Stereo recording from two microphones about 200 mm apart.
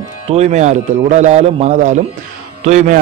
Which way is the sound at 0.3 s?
35° right (ahead or behind).